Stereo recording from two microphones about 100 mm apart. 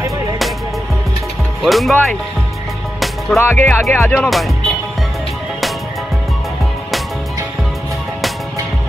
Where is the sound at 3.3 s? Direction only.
25° left (ahead or behind).